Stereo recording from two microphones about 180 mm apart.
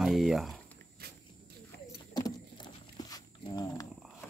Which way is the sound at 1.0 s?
60° right (ahead or behind).